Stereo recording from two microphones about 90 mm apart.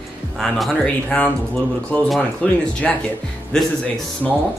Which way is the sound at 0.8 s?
10° left (ahead or behind).